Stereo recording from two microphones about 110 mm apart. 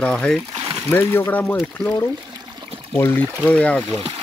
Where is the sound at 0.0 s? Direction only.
10° left (ahead or behind).